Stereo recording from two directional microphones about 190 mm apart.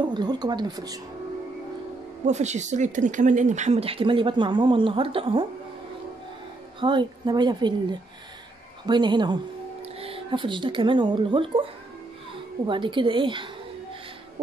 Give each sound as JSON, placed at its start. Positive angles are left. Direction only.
{"t": 0.1, "sound": "a woman's voice", "side_deg": -20}
{"t": 2.2, "sound": "speech", "side_deg": -35}
{"t": 6.8, "sound": "a woman's voice", "side_deg": -25}
{"t": 12.6, "sound": "a woman's voice", "side_deg": -25}